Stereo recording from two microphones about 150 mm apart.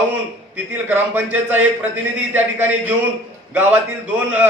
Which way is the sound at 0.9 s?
15° right (ahead or behind).